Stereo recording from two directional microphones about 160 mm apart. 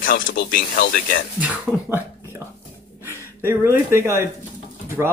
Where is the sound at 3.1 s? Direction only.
15° right (ahead or behind).